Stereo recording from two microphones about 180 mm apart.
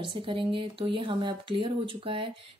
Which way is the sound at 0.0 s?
30° right (ahead or behind).